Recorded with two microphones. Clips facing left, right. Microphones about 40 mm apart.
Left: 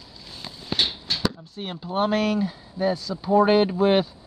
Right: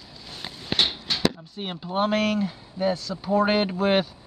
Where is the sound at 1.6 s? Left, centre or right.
Centre.